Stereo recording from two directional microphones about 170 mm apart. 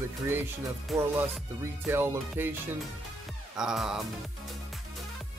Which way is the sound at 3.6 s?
Centre (ahead or behind).